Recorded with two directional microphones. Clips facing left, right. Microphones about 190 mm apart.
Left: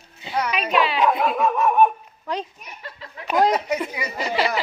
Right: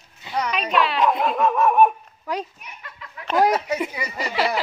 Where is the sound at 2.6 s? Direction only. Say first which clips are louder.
Left 3 dB; 30° left (ahead or behind).